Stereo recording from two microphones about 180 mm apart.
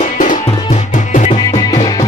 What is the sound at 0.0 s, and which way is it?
Music, 45° left (ahead or behind).